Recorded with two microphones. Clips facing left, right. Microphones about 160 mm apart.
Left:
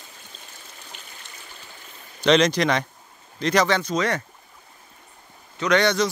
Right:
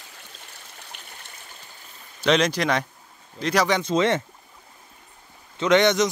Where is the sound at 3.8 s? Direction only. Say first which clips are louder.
Right 3 dB; 25° right (ahead or behind).